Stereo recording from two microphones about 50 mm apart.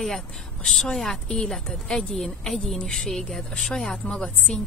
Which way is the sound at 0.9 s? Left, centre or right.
Centre.